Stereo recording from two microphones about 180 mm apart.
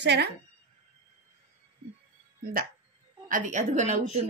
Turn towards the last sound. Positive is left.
turn(degrees=-40)  # may be behind; listen again after turning